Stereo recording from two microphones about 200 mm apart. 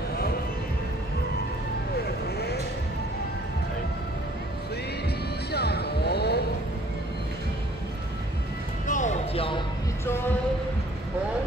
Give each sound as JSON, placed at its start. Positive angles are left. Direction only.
{"t": 2.0, "sound": "vehicle", "side_deg": 55}
{"t": 5.5, "sound": "vehicle", "side_deg": 55}
{"t": 8.8, "sound": "music", "side_deg": 40}